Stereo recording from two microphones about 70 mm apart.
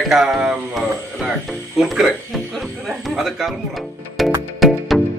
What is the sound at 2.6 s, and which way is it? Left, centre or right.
Music, centre.